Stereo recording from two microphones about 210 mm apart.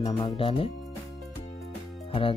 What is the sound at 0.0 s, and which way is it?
Speech, 25° left (ahead or behind).